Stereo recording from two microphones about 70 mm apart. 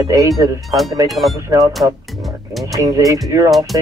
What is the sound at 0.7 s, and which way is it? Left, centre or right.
Speech, centre.